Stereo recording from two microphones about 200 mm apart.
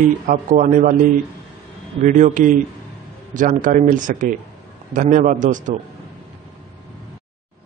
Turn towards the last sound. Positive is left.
turn(degrees=-40)  # may be behind; listen again after turning